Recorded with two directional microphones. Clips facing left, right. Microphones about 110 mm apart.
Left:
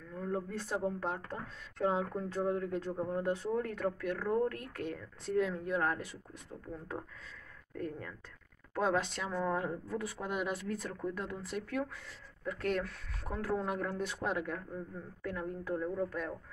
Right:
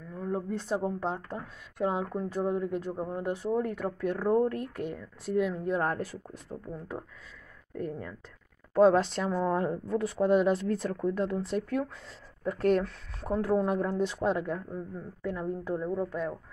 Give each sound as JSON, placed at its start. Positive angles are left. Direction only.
{"t": 0.1, "sound": "speech", "side_deg": -15}
{"t": 4.0, "sound": "speech", "side_deg": -30}
{"t": 5.6, "sound": "a woman's voice", "side_deg": -30}
{"t": 7.7, "sound": "speech", "side_deg": -20}
{"t": 8.7, "sound": "a woman's voice", "side_deg": -30}